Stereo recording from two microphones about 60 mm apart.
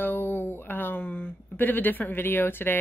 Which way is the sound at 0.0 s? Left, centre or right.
Left.